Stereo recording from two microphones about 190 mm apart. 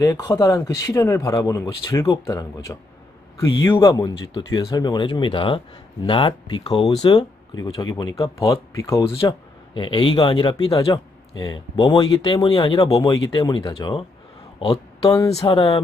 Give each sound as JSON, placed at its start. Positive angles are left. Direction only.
{"t": 0.0, "sound": "speech", "side_deg": 15}
{"t": 9.0, "sound": "speech", "side_deg": 30}
{"t": 15.3, "sound": "speech", "side_deg": 30}